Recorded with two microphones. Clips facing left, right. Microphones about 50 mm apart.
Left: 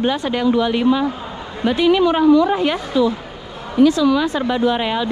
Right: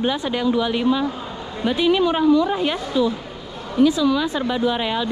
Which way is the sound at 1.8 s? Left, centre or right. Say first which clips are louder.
Left 4 dB; left.